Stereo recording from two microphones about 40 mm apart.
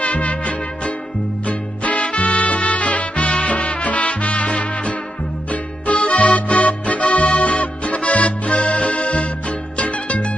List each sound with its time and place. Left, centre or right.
0.0 s music: left